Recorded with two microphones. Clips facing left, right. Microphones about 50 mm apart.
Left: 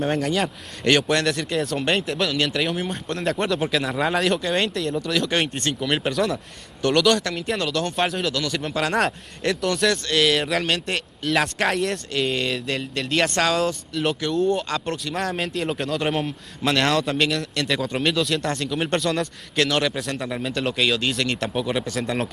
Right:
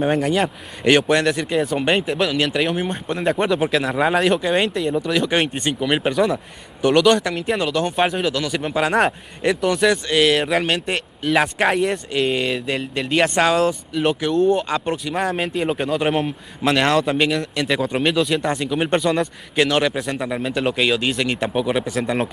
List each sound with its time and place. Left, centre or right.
0.0 s speech: centre
14.3 s speech: centre
14.7 s speech: centre